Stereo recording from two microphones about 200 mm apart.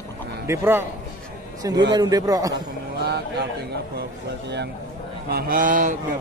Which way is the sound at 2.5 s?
55° right (ahead or behind).